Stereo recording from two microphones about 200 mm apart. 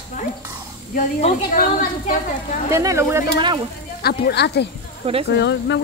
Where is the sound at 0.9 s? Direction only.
40° left (ahead or behind).